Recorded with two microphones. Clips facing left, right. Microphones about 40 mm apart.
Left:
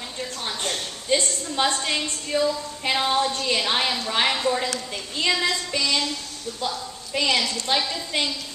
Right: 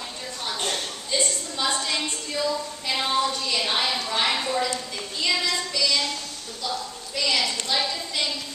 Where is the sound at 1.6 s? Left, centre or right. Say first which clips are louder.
Left 4 dB; left.